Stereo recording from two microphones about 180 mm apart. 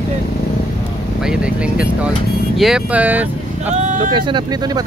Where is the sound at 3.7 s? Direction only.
40° right (ahead or behind).